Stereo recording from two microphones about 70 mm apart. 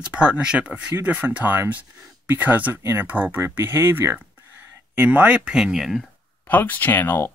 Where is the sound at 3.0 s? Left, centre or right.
Right; by 6.1 s centre.